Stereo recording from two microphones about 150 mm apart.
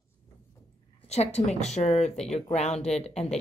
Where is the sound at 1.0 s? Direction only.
45° left (ahead or behind).